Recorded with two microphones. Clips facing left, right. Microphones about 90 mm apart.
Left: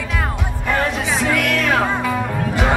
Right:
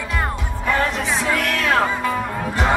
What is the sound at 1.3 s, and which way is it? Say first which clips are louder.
Music: left 3 dB; 35° right (ahead or behind).